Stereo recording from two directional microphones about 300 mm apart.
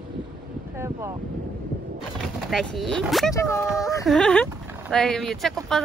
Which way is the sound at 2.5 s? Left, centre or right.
Centre.